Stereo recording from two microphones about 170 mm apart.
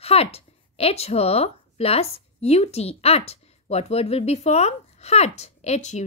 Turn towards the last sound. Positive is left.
turn(degrees=40)  # may be behind; listen again after turning